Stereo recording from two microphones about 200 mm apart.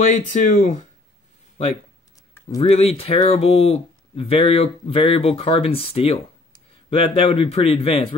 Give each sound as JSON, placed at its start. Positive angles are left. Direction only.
{"t": 0.0, "sound": "speech", "side_deg": 40}
{"t": 2.7, "sound": "speech", "side_deg": 30}